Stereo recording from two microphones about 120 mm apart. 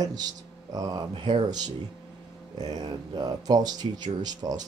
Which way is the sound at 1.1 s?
50° right (ahead or behind).